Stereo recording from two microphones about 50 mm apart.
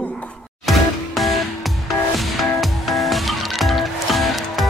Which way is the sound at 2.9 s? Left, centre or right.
Centre.